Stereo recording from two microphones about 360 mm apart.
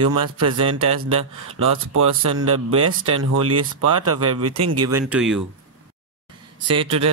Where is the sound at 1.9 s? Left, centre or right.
Right.